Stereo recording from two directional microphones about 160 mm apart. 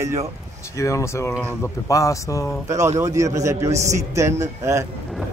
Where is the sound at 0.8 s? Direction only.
20° left (ahead or behind).